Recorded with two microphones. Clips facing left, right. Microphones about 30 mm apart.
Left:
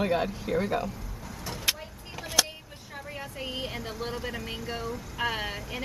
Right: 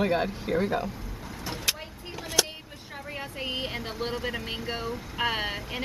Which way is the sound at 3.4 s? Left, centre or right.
Right.